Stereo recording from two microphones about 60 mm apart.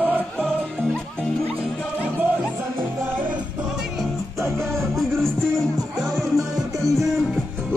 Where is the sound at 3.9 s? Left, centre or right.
Centre.